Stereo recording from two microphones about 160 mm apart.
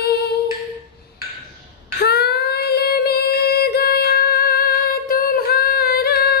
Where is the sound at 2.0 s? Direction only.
85° left.